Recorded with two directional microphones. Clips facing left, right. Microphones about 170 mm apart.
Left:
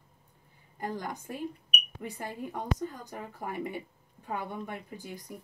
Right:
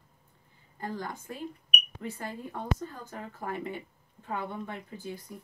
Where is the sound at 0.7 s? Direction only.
15° left (ahead or behind).